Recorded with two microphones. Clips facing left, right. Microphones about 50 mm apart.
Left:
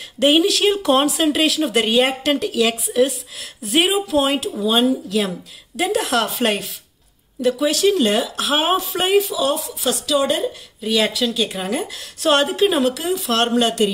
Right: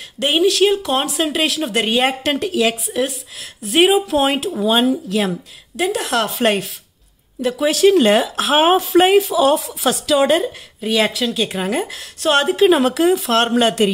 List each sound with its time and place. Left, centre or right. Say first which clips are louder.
0.2 s a woman's voice: even; centre
4.3 s speech: right 2 dB; right
4.7 s a woman's voice: left 1 dB; centre
5.8 s a woman's voice: even; centre
7.4 s speech: right 3 dB; right
7.9 s a woman's voice: right 5 dB; right
10.9 s a woman's voice: right 1 dB; centre
12.2 s a woman's voice: right 1 dB; centre
12.5 s a woman's voice: right 4 dB; centre
12.8 s speech: right 5 dB; right
13.2 s a woman's voice: right 2 dB; centre